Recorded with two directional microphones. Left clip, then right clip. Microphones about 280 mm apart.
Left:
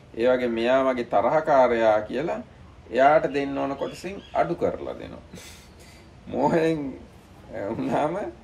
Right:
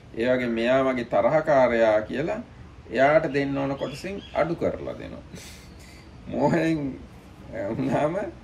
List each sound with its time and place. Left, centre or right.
0.2 s speech: centre